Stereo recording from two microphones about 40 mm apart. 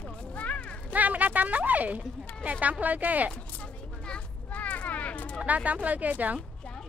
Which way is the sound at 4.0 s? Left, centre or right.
Left.